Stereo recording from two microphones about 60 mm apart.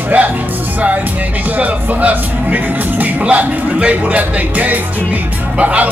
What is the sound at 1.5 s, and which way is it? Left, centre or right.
Speech, right.